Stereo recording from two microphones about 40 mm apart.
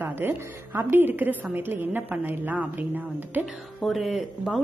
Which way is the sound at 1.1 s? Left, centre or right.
Right.